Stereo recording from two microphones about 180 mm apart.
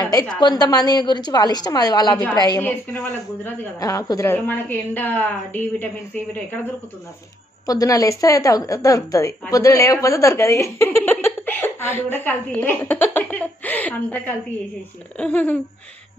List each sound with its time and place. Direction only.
0.4 s a woman's voice: 25° left (ahead or behind)
2.6 s a woman's voice: 10° left (ahead or behind)
3.8 s a woman's voice: 20° left (ahead or behind)
7.6 s a woman's voice: 20° left (ahead or behind)